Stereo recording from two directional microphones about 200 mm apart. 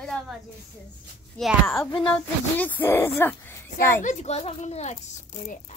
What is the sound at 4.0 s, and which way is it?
A child's voice, 35° left (ahead or behind).